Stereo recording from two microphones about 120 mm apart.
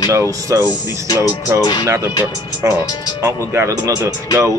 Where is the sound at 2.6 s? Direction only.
20° right (ahead or behind).